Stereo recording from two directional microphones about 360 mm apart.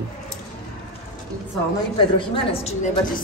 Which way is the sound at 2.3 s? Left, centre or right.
Centre.